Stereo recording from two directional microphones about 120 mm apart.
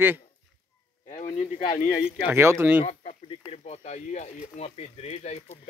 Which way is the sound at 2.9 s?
55° left (ahead or behind).